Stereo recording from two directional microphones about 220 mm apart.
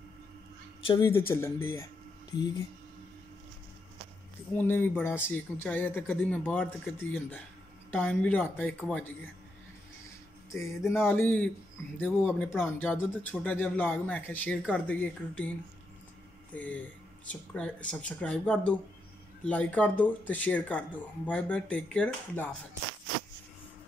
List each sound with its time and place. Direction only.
0.8 s speech: 15° left (ahead or behind)
4.6 s speech: 10° left (ahead or behind)
11.1 s speech: 10° left (ahead or behind)
16.5 s speech: 5° left (ahead or behind)